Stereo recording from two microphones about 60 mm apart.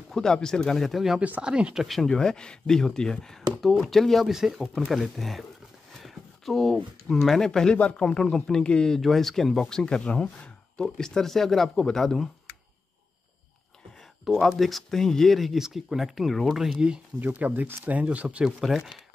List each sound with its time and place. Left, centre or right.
0.1 s speech: centre
1.4 s speech: centre
1.9 s speech: centre
4.3 s speech: centre
14.2 s speech: centre
17.2 s speech: right
18.4 s speech: centre